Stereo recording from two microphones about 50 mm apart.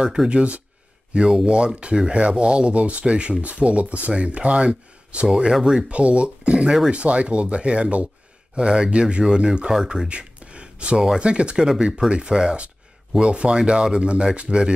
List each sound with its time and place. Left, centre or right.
0.3 s speech: right